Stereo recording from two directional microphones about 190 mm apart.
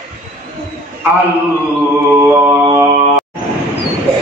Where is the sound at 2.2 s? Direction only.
15° right (ahead or behind).